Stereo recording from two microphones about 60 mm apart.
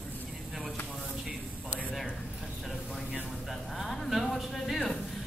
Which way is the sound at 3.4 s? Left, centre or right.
Centre.